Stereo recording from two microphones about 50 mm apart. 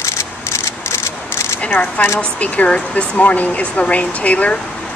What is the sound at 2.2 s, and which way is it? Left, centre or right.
Speech, left.